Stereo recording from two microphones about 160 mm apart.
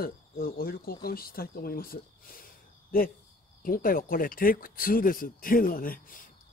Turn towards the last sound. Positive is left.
turn(degrees=60)  # may be behind; listen again after turning